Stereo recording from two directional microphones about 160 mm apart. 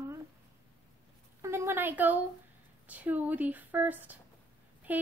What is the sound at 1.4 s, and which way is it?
A woman's voice, 15° right (ahead or behind).